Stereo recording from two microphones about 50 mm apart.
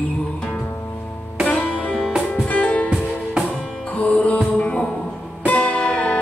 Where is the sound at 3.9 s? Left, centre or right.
Left.